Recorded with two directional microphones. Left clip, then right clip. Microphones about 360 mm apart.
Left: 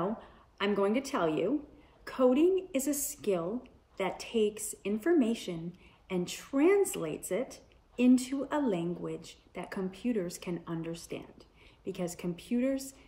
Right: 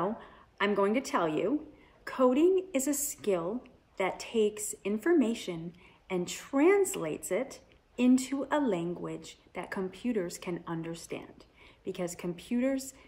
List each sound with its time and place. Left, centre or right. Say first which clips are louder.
0.0 s a woman's voice: right 2 dB; centre